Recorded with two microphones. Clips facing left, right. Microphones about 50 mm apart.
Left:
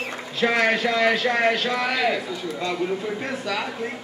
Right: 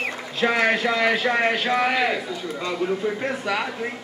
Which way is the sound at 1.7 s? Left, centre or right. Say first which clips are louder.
Right 3 dB; right.